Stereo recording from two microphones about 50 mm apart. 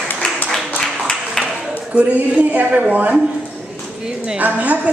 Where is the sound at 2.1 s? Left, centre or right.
Right.